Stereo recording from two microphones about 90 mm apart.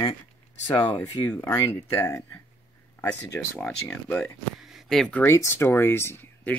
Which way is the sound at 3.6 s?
10° left (ahead or behind).